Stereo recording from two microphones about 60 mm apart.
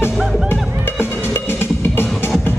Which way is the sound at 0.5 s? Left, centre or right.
Left.